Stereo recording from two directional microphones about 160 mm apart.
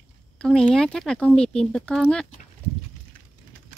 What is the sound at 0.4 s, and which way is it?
Speech, 5° left (ahead or behind).